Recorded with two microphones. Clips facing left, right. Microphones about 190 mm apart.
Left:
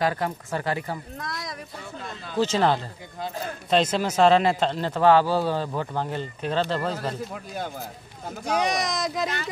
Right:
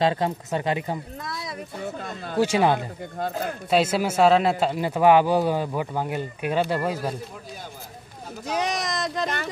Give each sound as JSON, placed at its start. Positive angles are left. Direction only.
{"t": 0.0, "sound": "speech", "side_deg": -20}
{"t": 2.0, "sound": "speech", "side_deg": -50}
{"t": 2.3, "sound": "speech", "side_deg": -10}
{"t": 8.5, "sound": "speech", "side_deg": 0}